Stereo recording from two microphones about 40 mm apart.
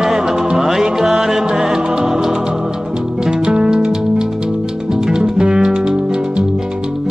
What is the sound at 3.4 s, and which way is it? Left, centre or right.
Music, right.